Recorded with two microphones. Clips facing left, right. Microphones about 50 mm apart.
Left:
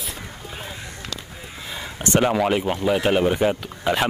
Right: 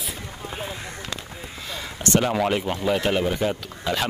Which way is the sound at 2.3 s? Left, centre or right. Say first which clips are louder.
Left 2 dB; centre.